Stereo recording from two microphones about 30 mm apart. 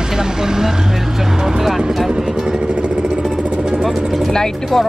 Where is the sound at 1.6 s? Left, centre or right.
Centre.